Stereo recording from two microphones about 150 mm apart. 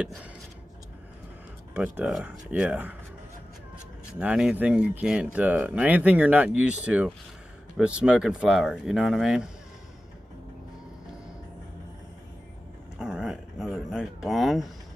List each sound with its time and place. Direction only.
0.0 s speech: 5° right (ahead or behind)
1.7 s speech: 10° right (ahead or behind)
4.2 s speech: 5° right (ahead or behind)
13.0 s dog: 5° right (ahead or behind)
13.8 s speech: centre (ahead or behind)